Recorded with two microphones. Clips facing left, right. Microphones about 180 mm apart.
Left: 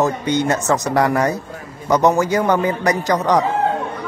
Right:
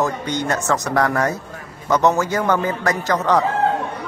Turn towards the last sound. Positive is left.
turn(degrees=15)  # may be behind; listen again after turning